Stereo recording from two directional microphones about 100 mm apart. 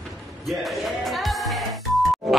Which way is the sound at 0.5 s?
Centre (ahead or behind).